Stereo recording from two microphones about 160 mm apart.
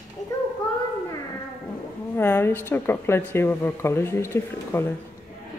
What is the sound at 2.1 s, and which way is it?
Speech, 15° left (ahead or behind).